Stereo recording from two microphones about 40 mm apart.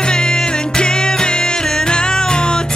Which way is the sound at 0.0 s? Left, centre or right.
Left.